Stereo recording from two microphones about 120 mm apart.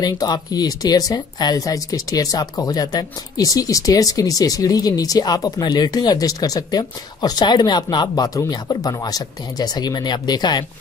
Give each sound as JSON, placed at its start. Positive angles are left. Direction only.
{"t": 0.0, "sound": "a woman's voice", "side_deg": 35}